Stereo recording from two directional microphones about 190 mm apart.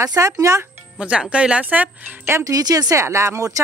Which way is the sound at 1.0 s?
5° right (ahead or behind).